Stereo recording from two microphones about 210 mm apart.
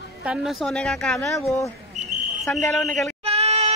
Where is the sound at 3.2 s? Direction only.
30° right (ahead or behind).